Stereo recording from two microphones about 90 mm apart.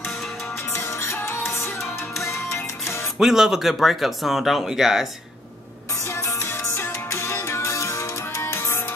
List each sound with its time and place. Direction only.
0.7 s music: 30° left (ahead or behind)
3.2 s speech: 5° right (ahead or behind)
6.1 s music: 30° left (ahead or behind)